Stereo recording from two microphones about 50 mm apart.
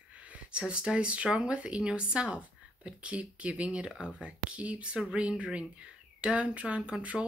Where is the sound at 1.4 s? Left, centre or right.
Right.